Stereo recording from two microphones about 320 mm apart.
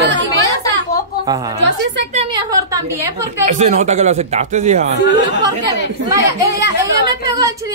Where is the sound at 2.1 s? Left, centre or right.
Centre.